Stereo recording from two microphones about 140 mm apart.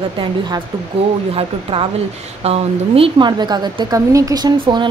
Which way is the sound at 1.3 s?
40° right (ahead or behind).